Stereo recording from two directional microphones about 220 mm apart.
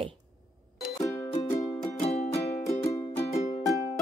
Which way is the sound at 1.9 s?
30° left (ahead or behind).